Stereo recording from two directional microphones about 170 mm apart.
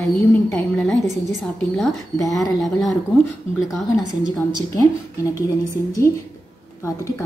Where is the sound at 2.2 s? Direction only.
20° left (ahead or behind).